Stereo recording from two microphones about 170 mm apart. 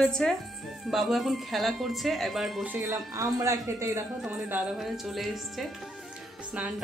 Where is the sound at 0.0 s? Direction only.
5° left (ahead or behind).